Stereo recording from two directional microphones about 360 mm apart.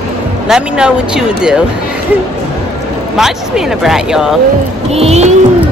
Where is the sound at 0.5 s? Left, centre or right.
Centre.